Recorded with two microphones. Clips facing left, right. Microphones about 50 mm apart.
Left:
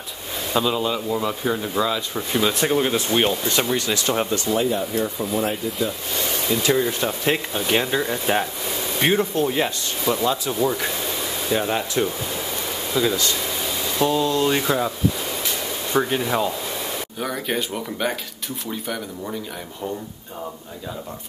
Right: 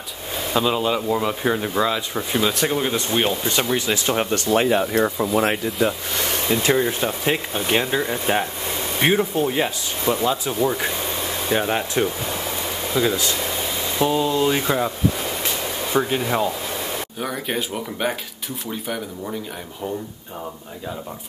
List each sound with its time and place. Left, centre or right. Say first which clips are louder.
0.7 s speech: right 2 dB; right
2.3 s speech: left 1 dB; centre
4.3 s speech: right 2 dB; right
4.6 s speech: right 6 dB; right
6.1 s a sound: right 1 dB; right
6.5 s speech: right 1 dB; right
6.9 s speech: even; centre
10.6 s speech: right 1 dB; right; by 14.9 s centre
15.9 s speech: even; centre
17.2 s speech: left 1 dB; centre